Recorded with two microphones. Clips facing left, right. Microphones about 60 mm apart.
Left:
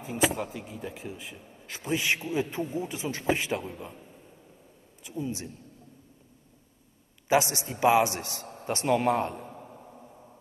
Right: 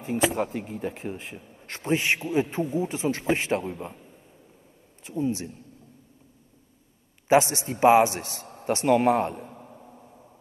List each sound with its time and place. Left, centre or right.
0.5 s a man's voice: right
5.0 s a man's voice: right
7.2 s a man's voice: right